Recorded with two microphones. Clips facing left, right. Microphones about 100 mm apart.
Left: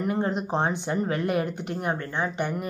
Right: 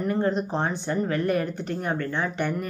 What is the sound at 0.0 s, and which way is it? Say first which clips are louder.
Speech: right 2 dB; 15° left (ahead or behind).